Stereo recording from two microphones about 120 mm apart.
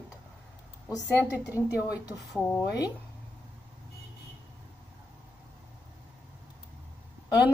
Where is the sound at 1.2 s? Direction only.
10° right (ahead or behind).